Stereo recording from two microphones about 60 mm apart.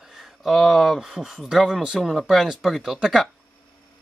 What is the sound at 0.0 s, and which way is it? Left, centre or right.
Speech, centre.